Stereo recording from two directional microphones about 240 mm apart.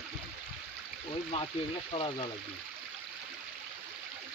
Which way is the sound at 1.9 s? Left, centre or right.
Left.